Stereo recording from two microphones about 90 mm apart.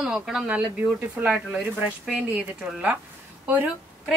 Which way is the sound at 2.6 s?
10° right (ahead or behind).